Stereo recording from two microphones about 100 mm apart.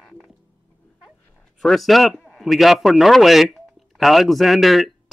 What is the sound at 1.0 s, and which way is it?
Speech, 5° left (ahead or behind).